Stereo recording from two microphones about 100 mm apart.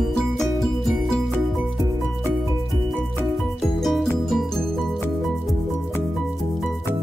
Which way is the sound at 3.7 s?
Centre (ahead or behind).